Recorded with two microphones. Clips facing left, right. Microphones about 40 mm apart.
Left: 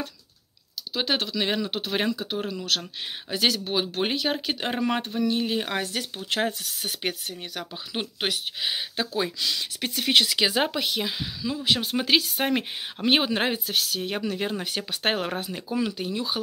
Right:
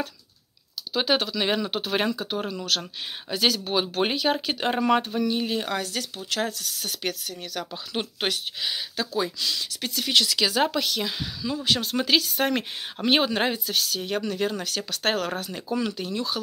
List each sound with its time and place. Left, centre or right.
0.9 s speech: centre
5.6 s speech: left; by 8.6 s centre
8.6 s speech: left